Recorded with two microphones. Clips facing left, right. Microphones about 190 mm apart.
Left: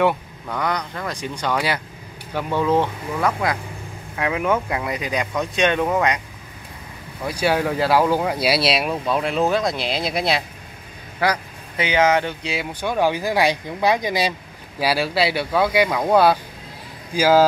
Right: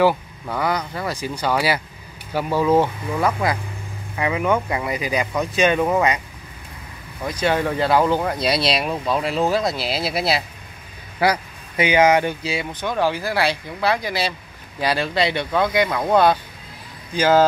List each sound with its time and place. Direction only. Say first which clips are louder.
0.0 s speech: right 2 dB; 5° right (ahead or behind)
7.2 s speech: even; 5° left (ahead or behind); by 12.4 s 10° right (ahead or behind)
12.8 s speech: left 2 dB; 15° left (ahead or behind)